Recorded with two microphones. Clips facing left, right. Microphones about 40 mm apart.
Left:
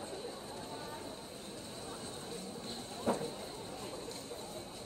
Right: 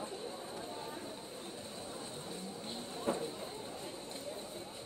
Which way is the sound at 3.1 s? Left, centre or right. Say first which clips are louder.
Left 2 dB; right.